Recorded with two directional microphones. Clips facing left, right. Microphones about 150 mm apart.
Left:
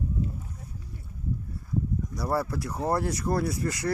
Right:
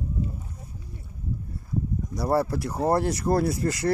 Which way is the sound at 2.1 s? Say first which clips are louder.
Right 5 dB; 25° right (ahead or behind).